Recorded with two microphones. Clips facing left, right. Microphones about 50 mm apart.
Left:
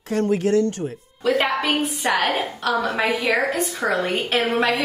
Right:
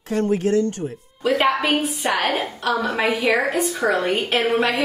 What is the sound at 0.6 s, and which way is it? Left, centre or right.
Speech, left.